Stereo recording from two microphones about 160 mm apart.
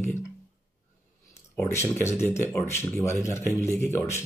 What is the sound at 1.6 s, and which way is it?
Speech, 15° left (ahead or behind).